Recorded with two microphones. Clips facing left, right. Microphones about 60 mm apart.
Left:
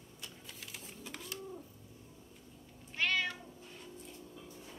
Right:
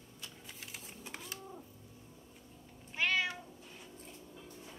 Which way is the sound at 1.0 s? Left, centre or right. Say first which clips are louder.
Left 1 dB; right.